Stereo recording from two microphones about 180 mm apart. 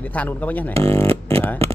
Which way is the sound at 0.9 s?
30° right (ahead or behind).